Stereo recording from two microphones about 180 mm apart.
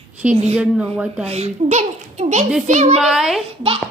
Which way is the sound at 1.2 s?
35° right (ahead or behind).